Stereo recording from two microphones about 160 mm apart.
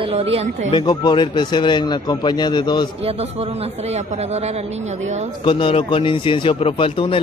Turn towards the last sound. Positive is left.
turn(degrees=35)  # may be behind; listen again after turning